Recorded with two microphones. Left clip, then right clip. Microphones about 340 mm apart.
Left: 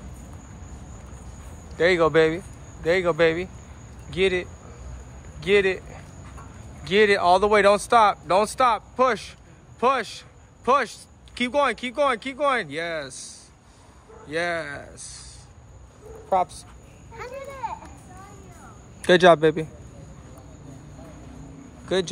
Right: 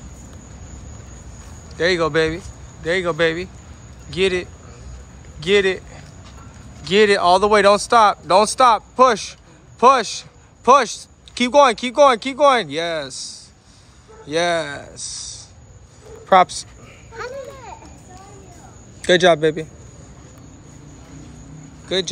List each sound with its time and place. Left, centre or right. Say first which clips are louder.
1.8 s a man's voice: right 1 dB; centre
16.3 s speech: right 10 dB; right
18.9 s a man's voice: right 1 dB; centre
21.9 s a man's voice: right 3 dB; centre